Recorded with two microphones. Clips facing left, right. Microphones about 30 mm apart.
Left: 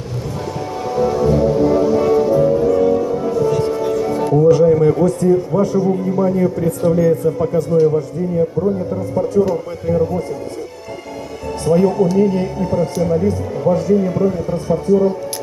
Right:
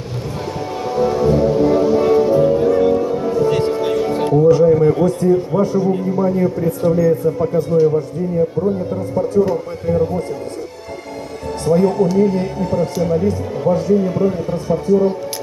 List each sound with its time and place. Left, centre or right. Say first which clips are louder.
0.8 s music: even; centre
4.6 s a sound: even; centre
5.5 s a man's voice: even; right
6.1 s a man's voice: left 1 dB; centre
9.7 s speech: even; centre
11.6 s speech: even; centre